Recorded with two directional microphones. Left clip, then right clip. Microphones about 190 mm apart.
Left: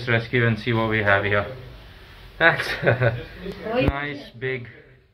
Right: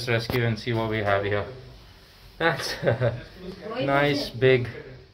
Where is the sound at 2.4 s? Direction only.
20° right (ahead or behind).